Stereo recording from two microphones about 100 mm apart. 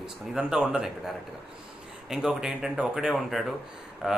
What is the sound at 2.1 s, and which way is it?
Speech, 5° right (ahead or behind).